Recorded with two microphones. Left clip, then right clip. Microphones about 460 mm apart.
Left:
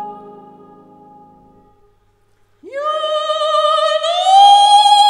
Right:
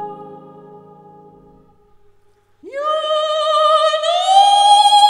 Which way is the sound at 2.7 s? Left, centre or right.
Centre.